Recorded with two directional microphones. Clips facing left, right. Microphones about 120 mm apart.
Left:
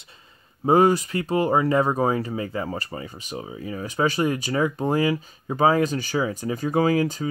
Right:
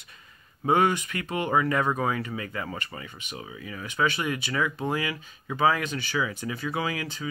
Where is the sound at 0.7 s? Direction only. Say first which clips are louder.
Left 5 dB; 35° left (ahead or behind).